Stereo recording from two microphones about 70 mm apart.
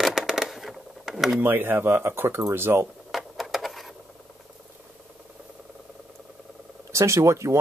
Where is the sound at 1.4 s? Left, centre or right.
Right.